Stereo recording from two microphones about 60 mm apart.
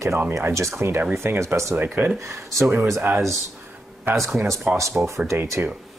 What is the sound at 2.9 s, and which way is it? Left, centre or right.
Speech, right.